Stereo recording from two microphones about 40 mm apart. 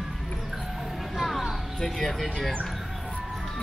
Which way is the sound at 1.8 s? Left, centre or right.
Centre.